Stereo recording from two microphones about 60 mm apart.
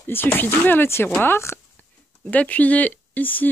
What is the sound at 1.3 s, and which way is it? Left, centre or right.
Speech, left.